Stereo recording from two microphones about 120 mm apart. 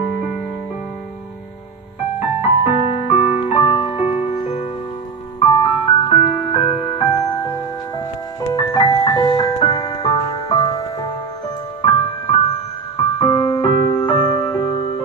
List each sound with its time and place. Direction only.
2.1 s music: 60° left (ahead or behind)
5.4 s music: 40° left (ahead or behind)
7.0 s music: 35° left (ahead or behind)
12.9 s music: 40° left (ahead or behind)